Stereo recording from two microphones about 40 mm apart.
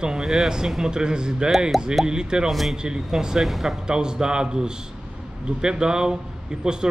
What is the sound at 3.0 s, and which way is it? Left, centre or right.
Speech, centre.